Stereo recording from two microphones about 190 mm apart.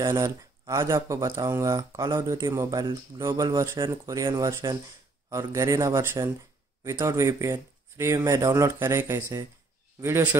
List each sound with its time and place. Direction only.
0.0 s speech: 15° right (ahead or behind)